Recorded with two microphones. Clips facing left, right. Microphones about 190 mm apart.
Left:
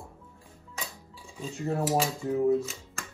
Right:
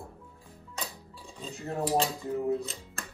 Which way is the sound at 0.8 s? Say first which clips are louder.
Right 1 dB; 35° right (ahead or behind).